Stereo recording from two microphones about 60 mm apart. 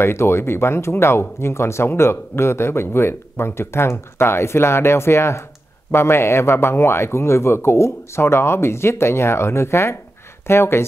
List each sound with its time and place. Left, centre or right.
0.0 s speech: left